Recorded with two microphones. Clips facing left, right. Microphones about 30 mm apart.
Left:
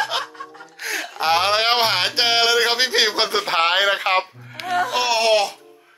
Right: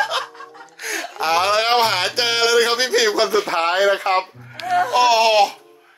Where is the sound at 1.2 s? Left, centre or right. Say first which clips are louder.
Right 1 dB; left.